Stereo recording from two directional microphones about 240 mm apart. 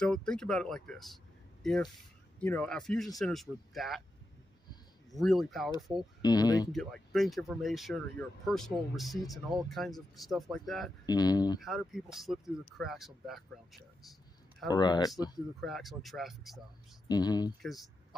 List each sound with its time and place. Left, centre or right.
0.0 s speech: centre
5.1 s speech: centre
6.2 s speech: centre
6.7 s speech: centre
11.1 s speech: centre
11.6 s speech: centre
14.7 s speech: centre
15.6 s speech: centre
17.1 s speech: centre
17.6 s speech: centre